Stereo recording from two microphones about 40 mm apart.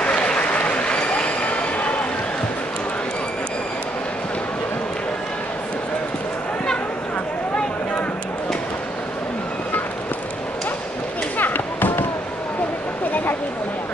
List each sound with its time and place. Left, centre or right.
0.0 s applause: left
11.3 s chop: left